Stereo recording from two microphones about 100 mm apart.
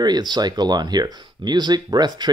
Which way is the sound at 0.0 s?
45° right (ahead or behind).